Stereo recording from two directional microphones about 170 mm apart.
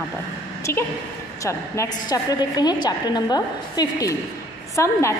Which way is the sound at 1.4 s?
15° left (ahead or behind).